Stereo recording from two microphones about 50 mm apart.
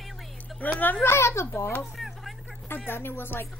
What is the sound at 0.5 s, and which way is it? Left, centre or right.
Speech, left.